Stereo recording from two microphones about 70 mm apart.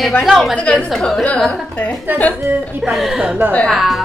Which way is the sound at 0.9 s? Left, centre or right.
Centre.